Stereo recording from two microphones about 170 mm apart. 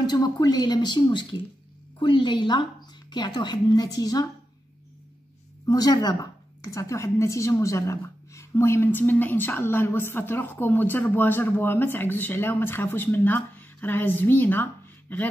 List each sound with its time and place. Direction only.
0.0 s a woman's voice: 25° left (ahead or behind)
5.7 s a woman's voice: 20° left (ahead or behind)